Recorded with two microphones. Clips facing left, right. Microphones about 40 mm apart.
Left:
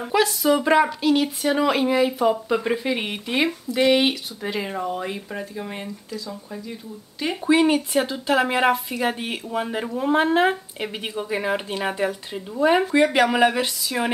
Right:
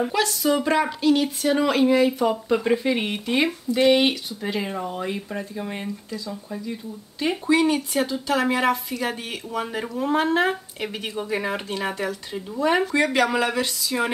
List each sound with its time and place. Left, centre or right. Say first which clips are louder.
0.1 s speech: left 3 dB; centre
7.4 s speech: left 3 dB; left